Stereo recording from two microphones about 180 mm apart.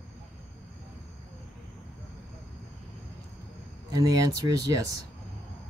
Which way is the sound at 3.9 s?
20° right (ahead or behind).